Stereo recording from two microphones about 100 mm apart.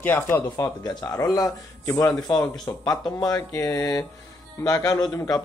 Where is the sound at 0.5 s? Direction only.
40° left (ahead or behind).